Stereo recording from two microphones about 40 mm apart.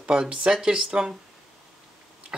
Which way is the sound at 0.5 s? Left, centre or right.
Centre.